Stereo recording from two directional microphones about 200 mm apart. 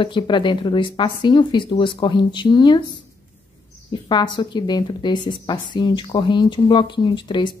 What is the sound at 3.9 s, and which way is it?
Speech, 25° left (ahead or behind).